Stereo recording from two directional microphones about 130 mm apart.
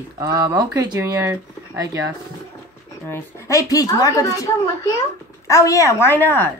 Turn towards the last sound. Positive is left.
turn(degrees=15)  # may be behind; listen again after turning